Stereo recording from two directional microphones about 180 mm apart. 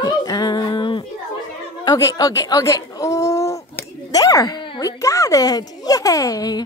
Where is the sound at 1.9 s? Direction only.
20° left (ahead or behind).